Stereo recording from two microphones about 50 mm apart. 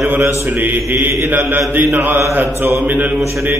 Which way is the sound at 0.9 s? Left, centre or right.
Right.